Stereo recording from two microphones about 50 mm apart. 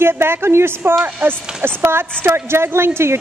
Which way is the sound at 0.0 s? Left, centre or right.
Right.